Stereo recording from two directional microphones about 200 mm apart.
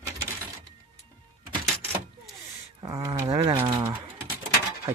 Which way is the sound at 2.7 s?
15° right (ahead or behind).